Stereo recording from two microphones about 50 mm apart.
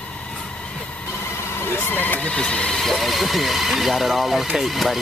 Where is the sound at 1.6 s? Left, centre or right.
Left; by 2.8 s centre.